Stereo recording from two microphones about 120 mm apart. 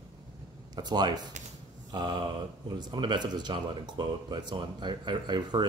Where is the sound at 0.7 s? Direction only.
35° right (ahead or behind).